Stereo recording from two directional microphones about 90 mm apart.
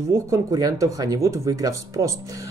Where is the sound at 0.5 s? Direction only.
40° right (ahead or behind).